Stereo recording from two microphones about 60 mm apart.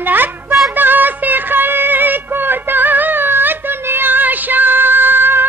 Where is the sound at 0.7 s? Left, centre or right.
Right.